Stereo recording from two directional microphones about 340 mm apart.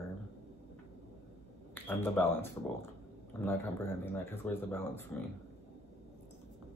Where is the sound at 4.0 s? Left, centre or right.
Centre.